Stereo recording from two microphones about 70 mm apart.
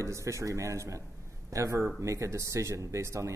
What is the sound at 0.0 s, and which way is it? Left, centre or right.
Speech, right.